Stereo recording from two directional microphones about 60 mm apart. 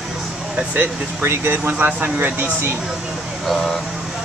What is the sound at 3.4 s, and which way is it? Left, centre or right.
Speech, centre.